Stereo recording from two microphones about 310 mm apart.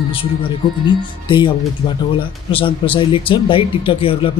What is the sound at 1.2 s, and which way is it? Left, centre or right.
Speech, centre.